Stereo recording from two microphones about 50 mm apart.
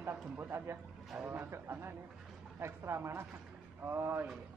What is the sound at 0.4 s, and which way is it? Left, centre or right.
Speech, right.